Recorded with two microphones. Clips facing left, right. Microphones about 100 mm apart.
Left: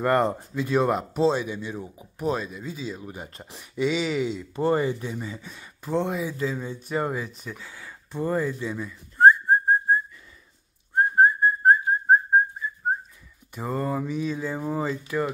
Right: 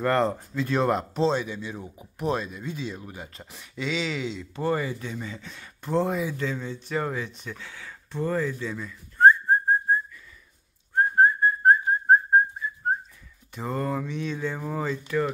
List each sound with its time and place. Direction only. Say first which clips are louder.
0.0 s speech: left 1 dB; 10° left (ahead or behind)
3.2 s speech: left 2 dB; 20° left (ahead or behind)
3.8 s speech: left 5 dB; 10° left (ahead or behind)
4.6 s speech: left 4 dB; 20° left (ahead or behind)
5.0 s speech: left 2 dB; 10° left (ahead or behind)
11.1 s whistling: left 1 dB; 10° left (ahead or behind)
13.6 s speech: left 1 dB; 5° left (ahead or behind)